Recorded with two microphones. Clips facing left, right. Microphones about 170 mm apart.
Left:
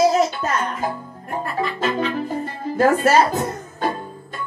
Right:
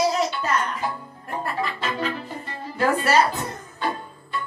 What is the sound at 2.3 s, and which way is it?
Music, 45° left (ahead or behind).